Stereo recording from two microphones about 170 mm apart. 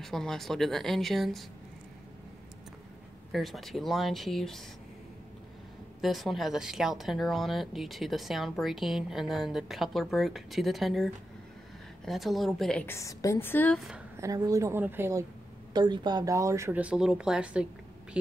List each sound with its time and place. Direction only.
0.0 s speech: centre (ahead or behind)
3.3 s speech: centre (ahead or behind)
5.9 s speech: centre (ahead or behind)
12.8 s a woman's voice: 15° left (ahead or behind)
14.1 s speech: 20° right (ahead or behind)
15.7 s speech: 25° right (ahead or behind); by 17.6 s 5° right (ahead or behind)